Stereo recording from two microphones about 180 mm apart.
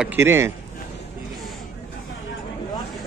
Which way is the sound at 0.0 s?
10° right (ahead or behind).